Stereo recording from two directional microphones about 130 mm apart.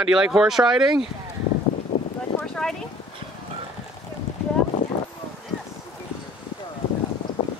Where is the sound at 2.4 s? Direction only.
5° left (ahead or behind).